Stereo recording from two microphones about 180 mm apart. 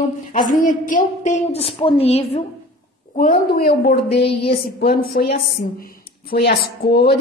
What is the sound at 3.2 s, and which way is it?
Speech, 55° left (ahead or behind).